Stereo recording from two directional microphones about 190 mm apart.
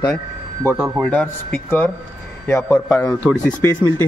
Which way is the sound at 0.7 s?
10° right (ahead or behind).